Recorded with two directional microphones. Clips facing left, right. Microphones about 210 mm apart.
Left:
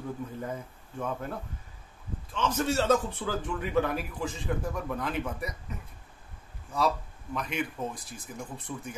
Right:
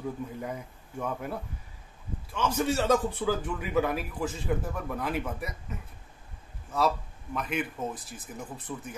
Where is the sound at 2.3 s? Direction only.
10° right (ahead or behind).